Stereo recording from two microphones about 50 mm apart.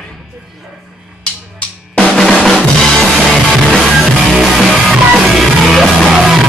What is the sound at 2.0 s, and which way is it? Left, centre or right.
Drum, centre.